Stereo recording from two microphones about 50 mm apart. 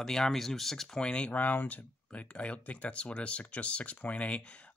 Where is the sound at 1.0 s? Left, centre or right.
Left.